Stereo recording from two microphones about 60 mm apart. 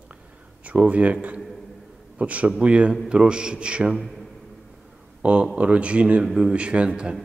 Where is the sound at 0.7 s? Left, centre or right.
Right.